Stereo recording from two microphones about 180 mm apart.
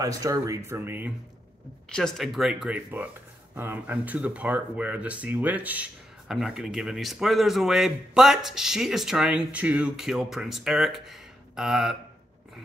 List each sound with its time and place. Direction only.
0.2 s speech: 20° right (ahead or behind)
1.9 s speech: 5° left (ahead or behind)